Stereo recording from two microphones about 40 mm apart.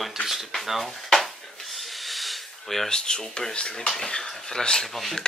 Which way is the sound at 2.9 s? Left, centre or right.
Centre.